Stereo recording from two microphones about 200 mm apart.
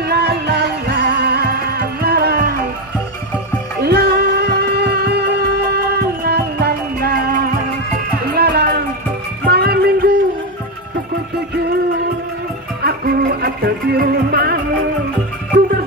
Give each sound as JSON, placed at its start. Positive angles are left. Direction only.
{"t": 0.0, "sound": "music", "side_deg": -50}
{"t": 3.8, "sound": "music", "side_deg": -55}
{"t": 12.8, "sound": "music", "side_deg": -50}